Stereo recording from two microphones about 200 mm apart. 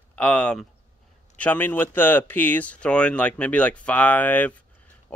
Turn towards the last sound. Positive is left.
turn(degrees=10)  # may be behind; listen again after turning